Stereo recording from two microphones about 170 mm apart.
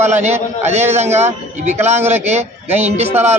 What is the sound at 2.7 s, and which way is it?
Speech, 40° right (ahead or behind).